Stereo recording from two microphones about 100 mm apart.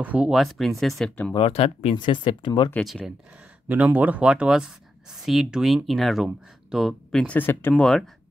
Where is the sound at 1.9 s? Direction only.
55° left (ahead or behind).